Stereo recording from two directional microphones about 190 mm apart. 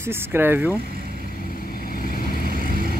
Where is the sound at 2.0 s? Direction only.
50° left (ahead or behind).